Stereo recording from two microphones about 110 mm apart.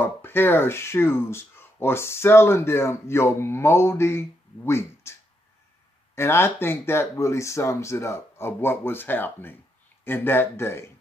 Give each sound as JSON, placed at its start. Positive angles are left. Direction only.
{"t": 0.0, "sound": "speech", "side_deg": 20}
{"t": 6.1, "sound": "speech", "side_deg": 20}